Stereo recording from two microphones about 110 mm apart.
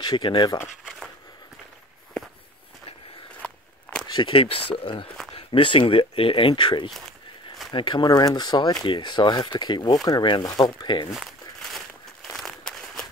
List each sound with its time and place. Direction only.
0.0 s speech: 40° left (ahead or behind)
4.1 s speech: 50° left (ahead or behind)
5.0 s speech: 5° left (ahead or behind)
5.3 s speech: 55° left (ahead or behind)
6.9 s walk: centre (ahead or behind)
7.7 s speech: 45° left (ahead or behind)
11.7 s a sound: centre (ahead or behind)